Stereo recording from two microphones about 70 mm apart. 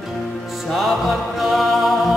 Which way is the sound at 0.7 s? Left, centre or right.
Centre.